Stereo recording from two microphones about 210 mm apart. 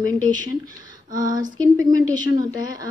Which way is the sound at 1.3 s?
15° right (ahead or behind).